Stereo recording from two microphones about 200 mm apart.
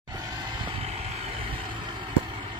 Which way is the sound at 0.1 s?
20° right (ahead or behind).